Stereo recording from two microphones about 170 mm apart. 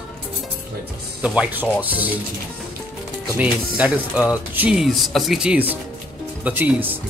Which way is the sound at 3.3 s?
10° right (ahead or behind).